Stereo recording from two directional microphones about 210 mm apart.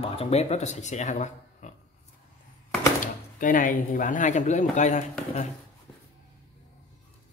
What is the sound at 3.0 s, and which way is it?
Speech, 40° left (ahead or behind).